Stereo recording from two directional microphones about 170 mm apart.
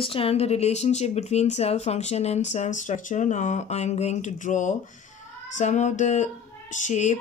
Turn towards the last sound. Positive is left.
turn(degrees=45)  # may be behind; listen again after turning